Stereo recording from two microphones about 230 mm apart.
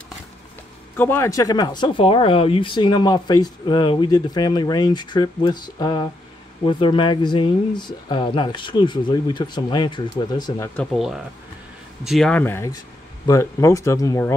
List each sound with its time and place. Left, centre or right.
0.9 s speech: centre
10.8 s speech: centre